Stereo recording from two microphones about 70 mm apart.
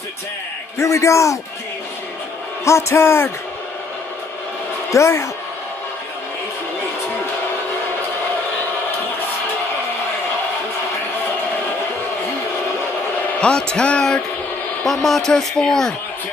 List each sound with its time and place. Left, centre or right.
0.7 s a man's voice: left
2.6 s a man's voice: left
4.9 s a man's voice: left
13.4 s a man's voice: centre
14.9 s speech: centre